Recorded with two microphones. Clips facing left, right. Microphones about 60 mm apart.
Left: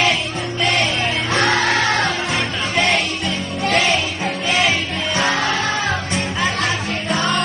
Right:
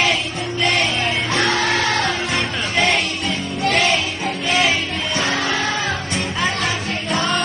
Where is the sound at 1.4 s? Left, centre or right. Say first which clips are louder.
Left 3 dB; left.